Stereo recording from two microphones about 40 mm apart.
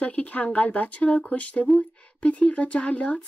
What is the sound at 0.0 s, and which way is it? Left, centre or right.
Speech, left.